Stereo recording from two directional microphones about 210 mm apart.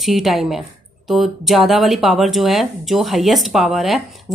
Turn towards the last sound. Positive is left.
turn(degrees=0)  # may be behind; listen again after turning